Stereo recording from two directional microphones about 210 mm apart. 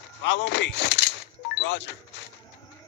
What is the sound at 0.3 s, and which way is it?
Speech, 55° left (ahead or behind).